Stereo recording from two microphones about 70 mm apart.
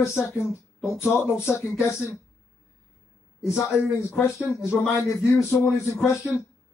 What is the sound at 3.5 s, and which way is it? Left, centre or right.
A man's voice, left.